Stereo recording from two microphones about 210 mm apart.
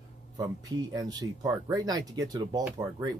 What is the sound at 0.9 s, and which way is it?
Speech, 20° right (ahead or behind).